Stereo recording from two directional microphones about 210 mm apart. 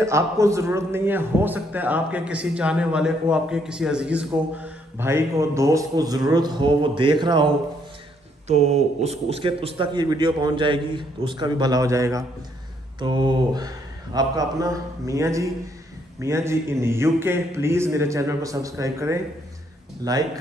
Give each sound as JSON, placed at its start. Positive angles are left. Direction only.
{"t": 0.0, "sound": "a man's voice", "side_deg": -15}
{"t": 8.5, "sound": "a man's voice", "side_deg": -30}